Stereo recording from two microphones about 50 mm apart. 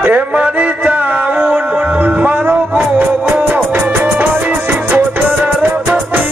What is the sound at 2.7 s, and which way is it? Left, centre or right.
Music, right.